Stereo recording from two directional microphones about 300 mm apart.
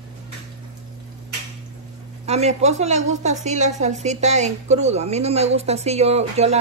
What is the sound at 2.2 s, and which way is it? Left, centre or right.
A woman's voice, right.